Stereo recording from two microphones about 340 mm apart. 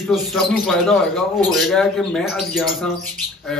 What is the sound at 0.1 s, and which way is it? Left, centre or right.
Speech, centre.